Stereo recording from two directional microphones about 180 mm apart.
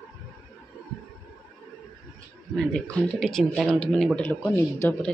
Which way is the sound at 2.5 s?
5° left (ahead or behind).